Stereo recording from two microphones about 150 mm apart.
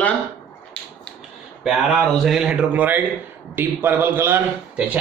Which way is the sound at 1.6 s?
Centre (ahead or behind).